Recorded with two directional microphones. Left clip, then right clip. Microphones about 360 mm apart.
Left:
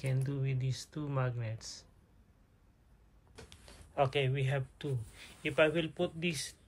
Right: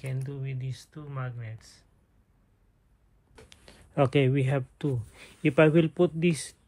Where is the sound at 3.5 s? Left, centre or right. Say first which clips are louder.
Right 3 dB; right.